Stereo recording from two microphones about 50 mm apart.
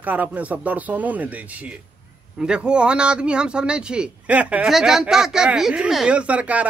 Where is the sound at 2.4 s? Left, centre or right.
Centre.